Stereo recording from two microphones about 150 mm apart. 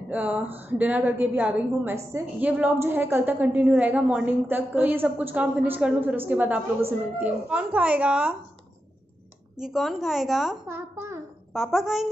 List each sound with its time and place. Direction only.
0.1 s a woman's voice: 10° right (ahead or behind)
9.6 s a woman's voice: centre (ahead or behind)
10.7 s a child's voice: 20° right (ahead or behind)
11.5 s a woman's voice: centre (ahead or behind)